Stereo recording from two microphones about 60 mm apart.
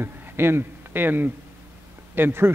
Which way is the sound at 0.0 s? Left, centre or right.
Right.